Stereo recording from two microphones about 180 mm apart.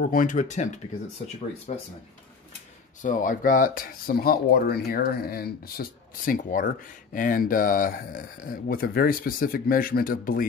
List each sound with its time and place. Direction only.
0.0 s speech: 50° left (ahead or behind)
3.0 s speech: 45° left (ahead or behind)